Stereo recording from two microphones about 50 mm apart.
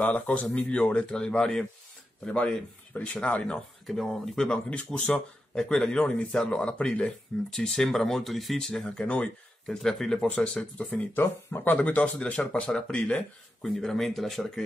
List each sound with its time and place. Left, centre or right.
0.0 s speech: left
2.2 s speech: left
3.8 s speech: centre
4.5 s speech: left
7.5 s speech: centre
8.5 s speech: centre
8.9 s speech: left
9.7 s speech: centre
10.2 s speech: left
11.1 s speech: left
11.7 s speech: left; by 14.6 s centre